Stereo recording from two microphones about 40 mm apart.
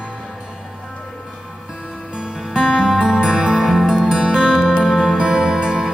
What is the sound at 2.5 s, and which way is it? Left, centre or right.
Music, centre.